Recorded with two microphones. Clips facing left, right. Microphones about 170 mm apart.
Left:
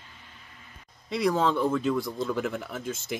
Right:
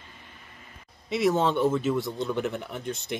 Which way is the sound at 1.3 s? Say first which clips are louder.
Right 1 dB; 25° right (ahead or behind).